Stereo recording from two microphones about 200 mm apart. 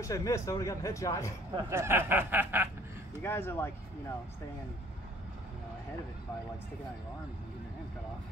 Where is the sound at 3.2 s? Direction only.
10° left (ahead or behind).